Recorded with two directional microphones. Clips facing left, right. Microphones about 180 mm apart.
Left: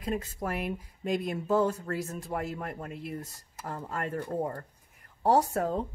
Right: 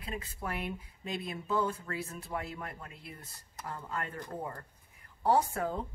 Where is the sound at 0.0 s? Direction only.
40° left (ahead or behind).